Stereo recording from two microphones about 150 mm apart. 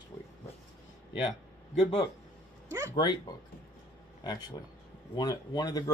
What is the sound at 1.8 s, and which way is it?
Speech, 40° left (ahead or behind).